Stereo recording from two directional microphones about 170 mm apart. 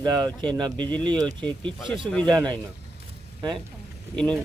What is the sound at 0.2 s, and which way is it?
Speech, 5° left (ahead or behind).